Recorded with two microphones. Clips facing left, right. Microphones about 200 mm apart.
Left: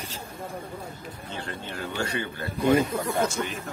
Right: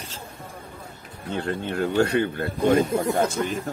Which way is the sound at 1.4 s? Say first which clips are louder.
Right 10 dB; 55° right (ahead or behind).